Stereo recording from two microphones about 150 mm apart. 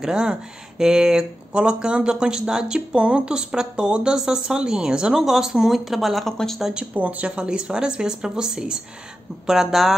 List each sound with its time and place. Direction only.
0.0 s speech: 5° right (ahead or behind)